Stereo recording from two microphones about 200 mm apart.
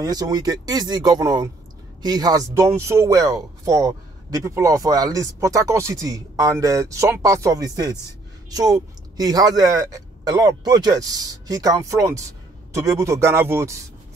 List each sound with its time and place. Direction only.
0.0 s speech: 20° right (ahead or behind)